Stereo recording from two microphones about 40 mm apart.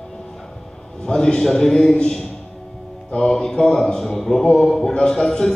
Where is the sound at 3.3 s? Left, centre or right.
Centre.